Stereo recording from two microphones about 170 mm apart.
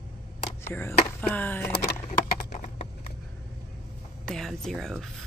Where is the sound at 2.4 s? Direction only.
45° left (ahead or behind).